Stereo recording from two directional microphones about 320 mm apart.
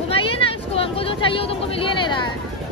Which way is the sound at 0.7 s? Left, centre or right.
Centre.